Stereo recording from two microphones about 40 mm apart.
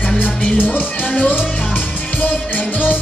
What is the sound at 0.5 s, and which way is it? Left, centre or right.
Music, left.